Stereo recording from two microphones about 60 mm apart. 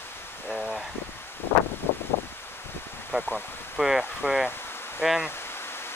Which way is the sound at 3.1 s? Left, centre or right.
Centre.